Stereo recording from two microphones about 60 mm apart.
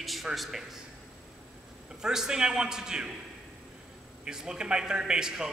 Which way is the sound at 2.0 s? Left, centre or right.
Centre.